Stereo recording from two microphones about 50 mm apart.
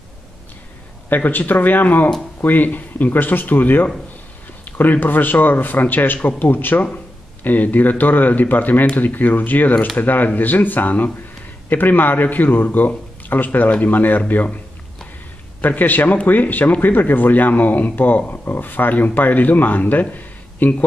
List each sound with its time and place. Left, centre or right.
1.0 s a man's voice: left
15.6 s a man's voice: left